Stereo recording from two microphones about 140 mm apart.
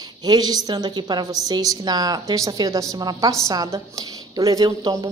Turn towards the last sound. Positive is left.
turn(degrees=-25)  # may be behind; listen again after turning